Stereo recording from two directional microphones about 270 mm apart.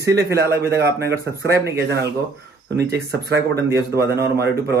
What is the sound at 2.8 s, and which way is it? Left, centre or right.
Speech, right.